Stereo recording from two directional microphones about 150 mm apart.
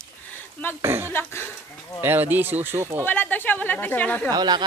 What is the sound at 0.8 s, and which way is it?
Speech, 15° right (ahead or behind).